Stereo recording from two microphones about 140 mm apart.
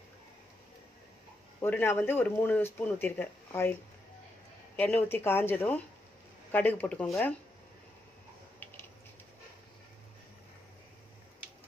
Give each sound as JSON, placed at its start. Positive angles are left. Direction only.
{"t": 1.6, "sound": "speech", "side_deg": 15}
{"t": 4.7, "sound": "speech", "side_deg": 10}